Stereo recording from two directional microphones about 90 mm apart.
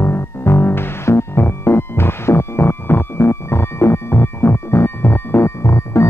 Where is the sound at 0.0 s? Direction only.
25° left (ahead or behind).